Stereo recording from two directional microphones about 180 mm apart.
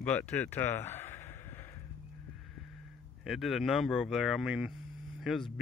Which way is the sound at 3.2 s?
Centre (ahead or behind).